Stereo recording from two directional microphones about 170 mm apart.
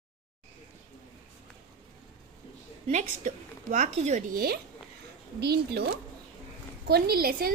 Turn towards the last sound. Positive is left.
turn(degrees=-60)  # may be behind; listen again after turning